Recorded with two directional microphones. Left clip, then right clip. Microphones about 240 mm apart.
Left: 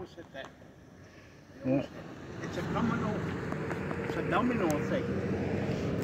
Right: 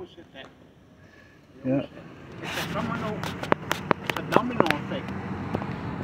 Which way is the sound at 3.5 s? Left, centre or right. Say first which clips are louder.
Right 12 dB; right.